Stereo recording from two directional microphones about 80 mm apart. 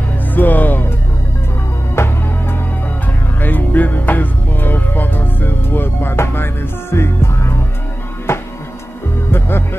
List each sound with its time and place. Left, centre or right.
0.3 s music: left
2.0 s music: left
3.3 s music: left
9.3 s music: left